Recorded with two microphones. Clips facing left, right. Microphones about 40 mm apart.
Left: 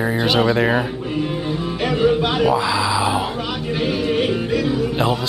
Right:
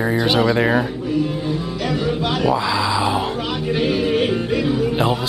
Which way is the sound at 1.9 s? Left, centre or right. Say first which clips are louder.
Left 5 dB; centre.